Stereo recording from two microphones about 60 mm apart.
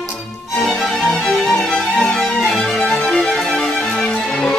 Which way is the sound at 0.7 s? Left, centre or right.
Centre.